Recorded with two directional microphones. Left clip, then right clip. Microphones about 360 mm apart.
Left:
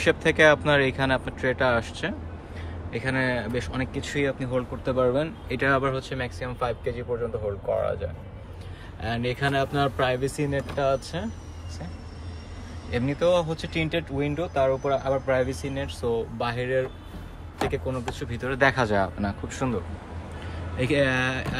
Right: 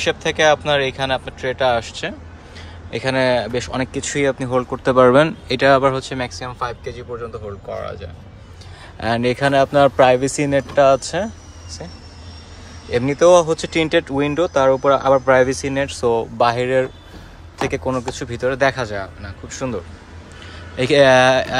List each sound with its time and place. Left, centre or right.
0.0 s speech: centre
9.0 s speech: centre
12.9 s speech: centre
20.7 s speech: centre